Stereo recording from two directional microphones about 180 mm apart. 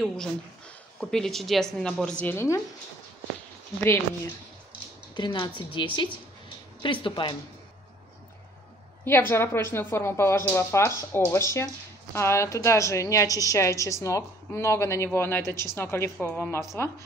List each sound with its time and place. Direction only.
0.0 s a woman's voice: 5° left (ahead or behind)
5.1 s a woman's voice: 25° left (ahead or behind)
9.0 s a woman's voice: 15° left (ahead or behind)